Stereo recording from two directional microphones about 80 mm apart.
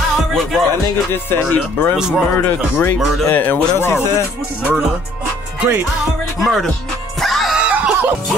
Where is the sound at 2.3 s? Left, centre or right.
Left.